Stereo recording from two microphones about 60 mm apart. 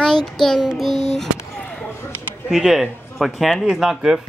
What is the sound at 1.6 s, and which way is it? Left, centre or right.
Basketball bounce, left.